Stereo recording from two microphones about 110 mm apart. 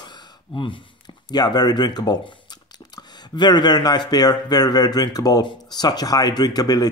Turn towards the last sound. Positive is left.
turn(degrees=35)  # may be behind; listen again after turning